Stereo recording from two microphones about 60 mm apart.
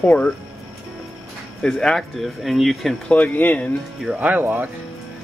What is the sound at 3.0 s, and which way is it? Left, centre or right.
Speech, left.